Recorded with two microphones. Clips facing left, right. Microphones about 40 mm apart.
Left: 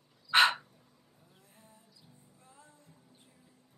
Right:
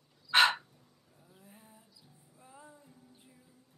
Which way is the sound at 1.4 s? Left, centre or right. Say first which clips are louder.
Right 4 dB; centre.